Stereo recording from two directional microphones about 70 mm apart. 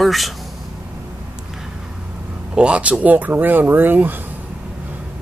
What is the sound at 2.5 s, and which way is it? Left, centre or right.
Speech, centre.